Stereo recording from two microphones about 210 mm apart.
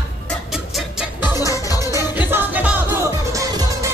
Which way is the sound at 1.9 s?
10° right (ahead or behind).